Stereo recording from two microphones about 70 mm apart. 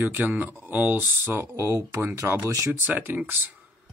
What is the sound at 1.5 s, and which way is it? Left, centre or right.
Speech, right.